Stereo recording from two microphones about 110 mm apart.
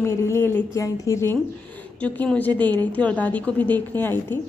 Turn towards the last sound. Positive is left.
turn(degrees=20)  # may be behind; listen again after turning